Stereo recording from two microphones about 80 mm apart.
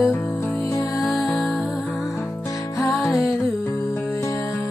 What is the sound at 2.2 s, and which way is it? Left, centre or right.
Music, left.